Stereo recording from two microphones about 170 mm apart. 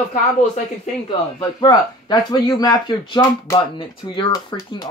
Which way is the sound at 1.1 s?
25° left (ahead or behind).